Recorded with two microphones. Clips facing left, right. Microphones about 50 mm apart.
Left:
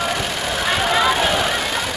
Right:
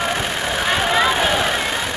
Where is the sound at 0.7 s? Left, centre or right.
Centre.